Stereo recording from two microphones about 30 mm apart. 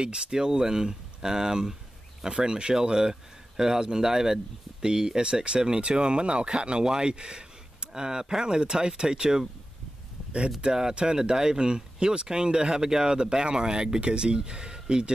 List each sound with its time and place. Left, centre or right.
0.0 s speech: right
10.6 s speech: right